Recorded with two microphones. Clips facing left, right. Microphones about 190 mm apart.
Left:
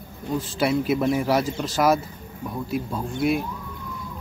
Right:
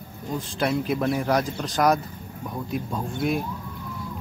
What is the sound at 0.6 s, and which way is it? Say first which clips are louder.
A man's voice: left 2 dB; 5° left (ahead or behind).